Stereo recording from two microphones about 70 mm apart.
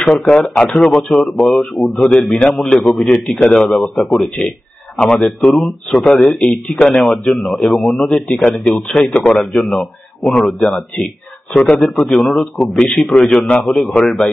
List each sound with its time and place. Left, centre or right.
0.0 s speech: centre
4.9 s speech: centre
5.4 s speech: centre
6.1 s speech: left
6.7 s speech: centre